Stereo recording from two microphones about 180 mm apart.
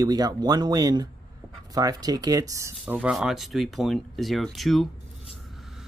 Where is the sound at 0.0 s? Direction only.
20° right (ahead or behind).